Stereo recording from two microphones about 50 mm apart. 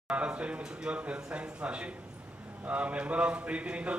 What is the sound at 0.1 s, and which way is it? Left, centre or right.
A man's voice, right.